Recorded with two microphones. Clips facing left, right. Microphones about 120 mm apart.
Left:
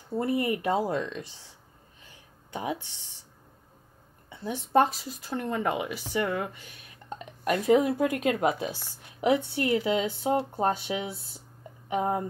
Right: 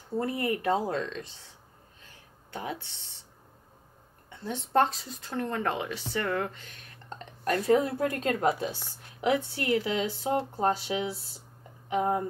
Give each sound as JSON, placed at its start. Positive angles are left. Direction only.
{"t": 0.2, "sound": "speech", "side_deg": 15}
{"t": 2.5, "sound": "speech", "side_deg": 15}
{"t": 4.3, "sound": "speech", "side_deg": 10}